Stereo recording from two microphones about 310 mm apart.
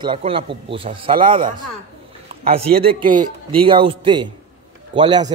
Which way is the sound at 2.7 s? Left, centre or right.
Centre.